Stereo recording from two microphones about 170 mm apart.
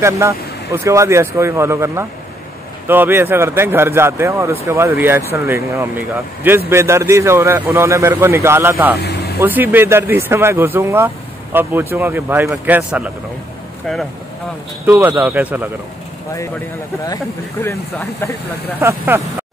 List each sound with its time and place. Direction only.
0.8 s speech: 15° right (ahead or behind)
14.9 s speech: 10° right (ahead or behind)
17.0 s speech: 20° left (ahead or behind)
18.8 s speech: 15° right (ahead or behind)